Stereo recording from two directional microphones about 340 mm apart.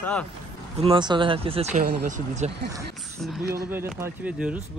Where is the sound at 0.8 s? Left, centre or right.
Centre.